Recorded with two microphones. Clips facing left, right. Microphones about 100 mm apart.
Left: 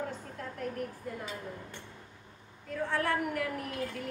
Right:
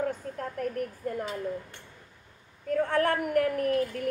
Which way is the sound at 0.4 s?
50° right (ahead or behind).